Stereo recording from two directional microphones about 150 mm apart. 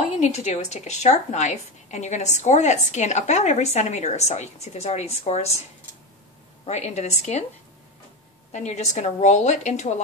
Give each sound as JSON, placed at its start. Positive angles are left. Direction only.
{"t": 0.2, "sound": "a woman's voice", "side_deg": 50}
{"t": 6.6, "sound": "a woman's voice", "side_deg": 50}
{"t": 8.5, "sound": "a woman's voice", "side_deg": 50}